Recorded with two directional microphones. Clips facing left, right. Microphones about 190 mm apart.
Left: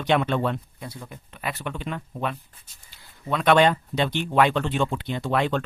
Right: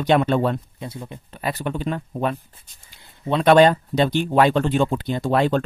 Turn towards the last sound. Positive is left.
turn(degrees=-35)  # may be behind; listen again after turning